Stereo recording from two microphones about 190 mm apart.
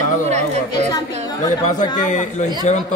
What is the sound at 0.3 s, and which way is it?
Chatter, 35° right (ahead or behind).